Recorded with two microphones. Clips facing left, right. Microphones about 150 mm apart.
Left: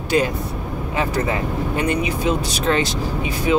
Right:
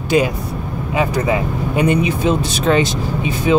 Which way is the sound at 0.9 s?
15° right (ahead or behind).